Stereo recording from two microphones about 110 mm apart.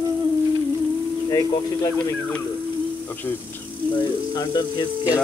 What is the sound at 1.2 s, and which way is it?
Speech, 30° left (ahead or behind).